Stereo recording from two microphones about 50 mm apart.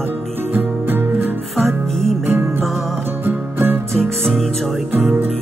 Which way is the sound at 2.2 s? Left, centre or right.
Right.